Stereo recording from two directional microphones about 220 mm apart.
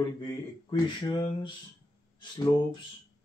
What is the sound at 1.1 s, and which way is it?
Speech, 20° left (ahead or behind).